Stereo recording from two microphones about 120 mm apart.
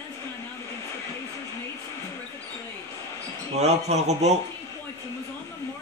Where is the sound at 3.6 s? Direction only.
65° right (ahead or behind).